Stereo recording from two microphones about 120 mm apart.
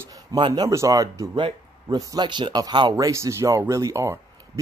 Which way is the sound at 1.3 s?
45° right (ahead or behind).